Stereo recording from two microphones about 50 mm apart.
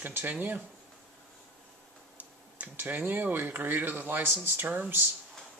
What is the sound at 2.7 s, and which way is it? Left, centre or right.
Speech, right.